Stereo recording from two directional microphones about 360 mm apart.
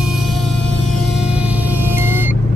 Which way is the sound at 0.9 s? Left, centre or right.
Centre.